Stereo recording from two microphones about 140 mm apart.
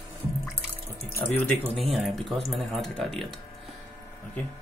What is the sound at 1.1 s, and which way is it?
Speech, 15° left (ahead or behind).